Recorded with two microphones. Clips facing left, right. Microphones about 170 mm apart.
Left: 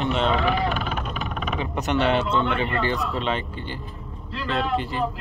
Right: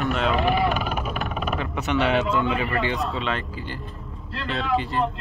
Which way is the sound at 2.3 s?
30° left (ahead or behind).